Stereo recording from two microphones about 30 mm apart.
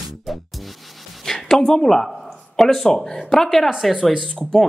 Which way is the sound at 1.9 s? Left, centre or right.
Centre.